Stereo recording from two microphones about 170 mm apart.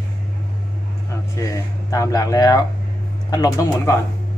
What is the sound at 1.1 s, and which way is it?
Speech, 20° left (ahead or behind).